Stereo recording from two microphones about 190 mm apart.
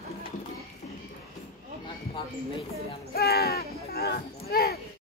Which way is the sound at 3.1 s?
55° left (ahead or behind).